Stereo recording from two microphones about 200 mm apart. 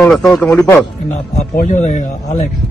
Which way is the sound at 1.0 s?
40° left (ahead or behind).